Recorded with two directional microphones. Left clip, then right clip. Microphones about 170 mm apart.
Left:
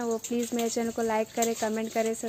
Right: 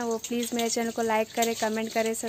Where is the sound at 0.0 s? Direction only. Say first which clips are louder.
Even; 5° left (ahead or behind).